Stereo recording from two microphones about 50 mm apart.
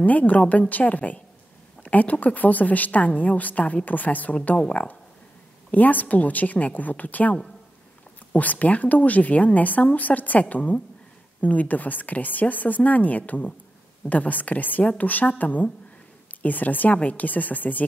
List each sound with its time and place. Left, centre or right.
0.0 s a woman's voice: left